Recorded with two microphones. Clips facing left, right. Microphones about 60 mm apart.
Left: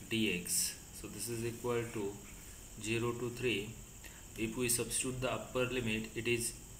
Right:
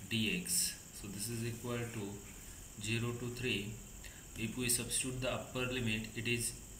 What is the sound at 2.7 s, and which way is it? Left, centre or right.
Speech, centre.